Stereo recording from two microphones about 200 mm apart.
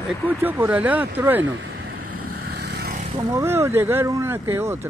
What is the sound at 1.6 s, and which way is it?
Vehicle, 65° right (ahead or behind).